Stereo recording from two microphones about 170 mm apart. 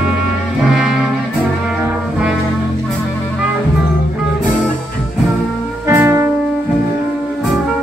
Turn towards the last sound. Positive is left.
turn(degrees=-15)  # may be behind; listen again after turning